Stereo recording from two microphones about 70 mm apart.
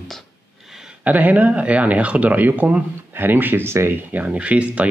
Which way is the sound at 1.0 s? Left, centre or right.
Right.